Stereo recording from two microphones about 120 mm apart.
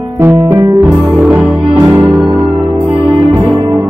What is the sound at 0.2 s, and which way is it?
Music, 20° right (ahead or behind).